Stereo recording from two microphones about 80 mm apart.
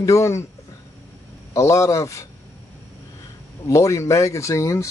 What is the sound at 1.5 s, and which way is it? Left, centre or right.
Speech, left.